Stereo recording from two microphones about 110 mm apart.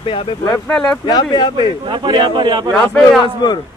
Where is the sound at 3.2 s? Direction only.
40° left (ahead or behind).